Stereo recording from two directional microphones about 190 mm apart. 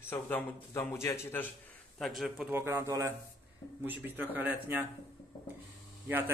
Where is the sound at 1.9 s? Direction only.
Centre (ahead or behind).